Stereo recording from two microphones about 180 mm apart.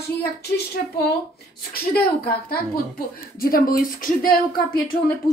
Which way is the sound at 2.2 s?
55° left (ahead or behind).